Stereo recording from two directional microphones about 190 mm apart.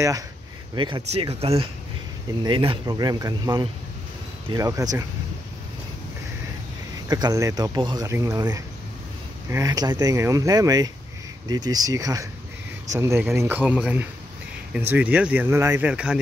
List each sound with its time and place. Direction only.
0.7 s speech: 25° right (ahead or behind)
7.1 s speech: 20° right (ahead or behind)